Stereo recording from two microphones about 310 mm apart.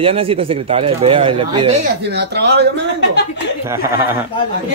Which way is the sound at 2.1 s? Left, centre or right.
Right.